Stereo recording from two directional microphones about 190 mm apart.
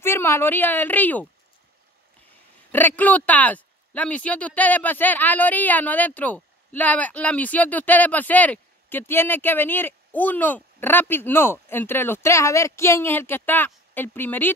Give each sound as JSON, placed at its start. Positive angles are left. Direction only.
{"t": 0.0, "sound": "speech", "side_deg": 15}
{"t": 2.7, "sound": "speech", "side_deg": 10}